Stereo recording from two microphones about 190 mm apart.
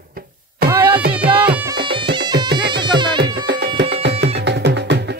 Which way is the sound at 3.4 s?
60° right (ahead or behind).